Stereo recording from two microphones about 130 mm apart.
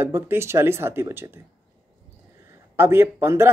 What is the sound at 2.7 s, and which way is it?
Speech, 15° right (ahead or behind).